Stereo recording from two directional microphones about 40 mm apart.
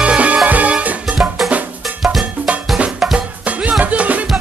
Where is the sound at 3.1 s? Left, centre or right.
Right.